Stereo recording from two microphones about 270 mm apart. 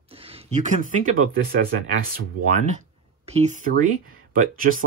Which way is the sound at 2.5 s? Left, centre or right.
Right.